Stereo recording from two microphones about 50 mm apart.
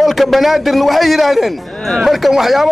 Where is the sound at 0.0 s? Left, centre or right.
Centre.